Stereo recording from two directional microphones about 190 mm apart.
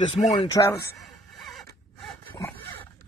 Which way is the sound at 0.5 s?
15° left (ahead or behind).